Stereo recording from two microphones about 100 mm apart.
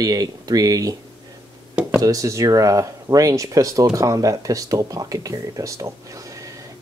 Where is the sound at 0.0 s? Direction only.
40° right (ahead or behind).